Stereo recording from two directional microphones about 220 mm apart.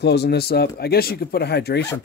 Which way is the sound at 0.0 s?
50° left (ahead or behind).